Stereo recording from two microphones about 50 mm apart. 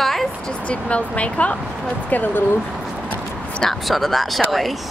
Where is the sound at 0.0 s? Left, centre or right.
Centre.